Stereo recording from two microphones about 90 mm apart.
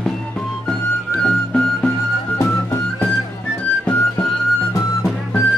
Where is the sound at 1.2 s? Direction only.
10° left (ahead or behind).